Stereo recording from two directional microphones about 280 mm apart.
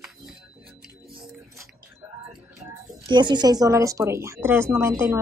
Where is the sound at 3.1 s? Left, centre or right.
Centre.